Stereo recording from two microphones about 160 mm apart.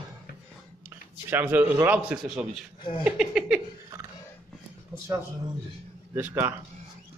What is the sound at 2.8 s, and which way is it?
Speech, 30° left (ahead or behind).